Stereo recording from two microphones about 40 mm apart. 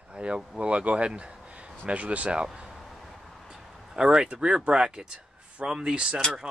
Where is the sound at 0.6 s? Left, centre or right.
Right.